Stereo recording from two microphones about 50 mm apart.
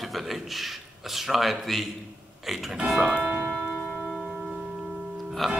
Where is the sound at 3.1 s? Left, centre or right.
Right.